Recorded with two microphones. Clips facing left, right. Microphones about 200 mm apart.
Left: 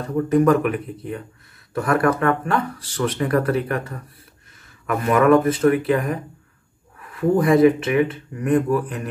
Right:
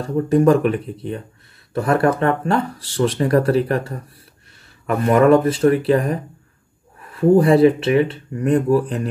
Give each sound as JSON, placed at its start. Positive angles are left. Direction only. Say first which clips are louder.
{"t": 0.0, "sound": "speech", "louder": "right 2 dB", "side_deg": -30}